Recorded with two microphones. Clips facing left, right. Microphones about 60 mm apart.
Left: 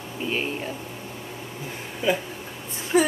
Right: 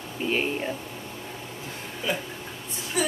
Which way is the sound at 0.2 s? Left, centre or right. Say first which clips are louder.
Right 1 dB; centre.